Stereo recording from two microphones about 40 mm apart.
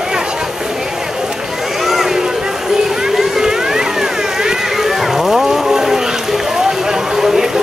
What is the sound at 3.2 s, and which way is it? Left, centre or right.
Vehicle, centre.